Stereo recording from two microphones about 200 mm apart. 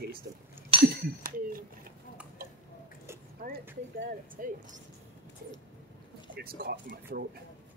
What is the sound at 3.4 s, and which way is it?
Speech, 45° right (ahead or behind).